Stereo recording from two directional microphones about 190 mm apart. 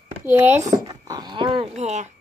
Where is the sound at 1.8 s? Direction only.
35° right (ahead or behind).